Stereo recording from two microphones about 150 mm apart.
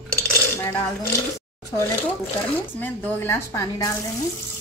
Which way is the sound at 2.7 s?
15° left (ahead or behind).